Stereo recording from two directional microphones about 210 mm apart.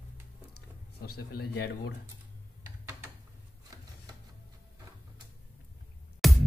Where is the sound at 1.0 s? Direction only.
45° left (ahead or behind).